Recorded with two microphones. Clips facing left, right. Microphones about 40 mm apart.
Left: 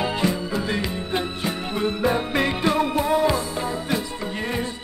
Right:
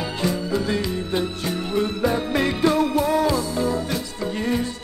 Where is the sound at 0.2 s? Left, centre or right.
Centre.